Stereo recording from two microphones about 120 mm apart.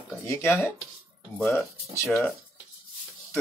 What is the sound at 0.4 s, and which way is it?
Speech, 20° left (ahead or behind).